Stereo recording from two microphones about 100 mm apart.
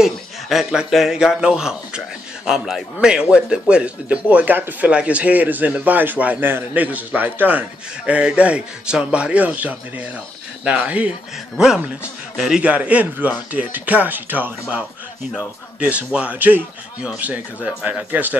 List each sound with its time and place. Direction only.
0.0 s a man's voice: 5° right (ahead or behind)